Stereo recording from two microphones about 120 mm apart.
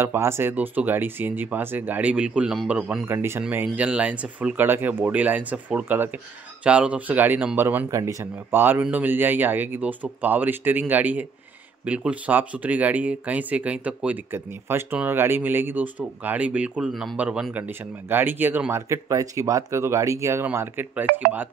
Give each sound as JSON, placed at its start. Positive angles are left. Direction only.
{"t": 0.0, "sound": "speech", "side_deg": -20}
{"t": 3.1, "sound": "speech", "side_deg": -20}